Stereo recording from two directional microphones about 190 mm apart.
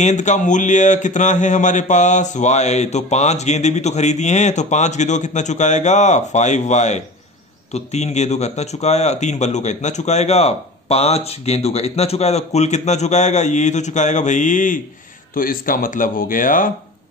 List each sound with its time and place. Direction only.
0.0 s speech: 40° left (ahead or behind)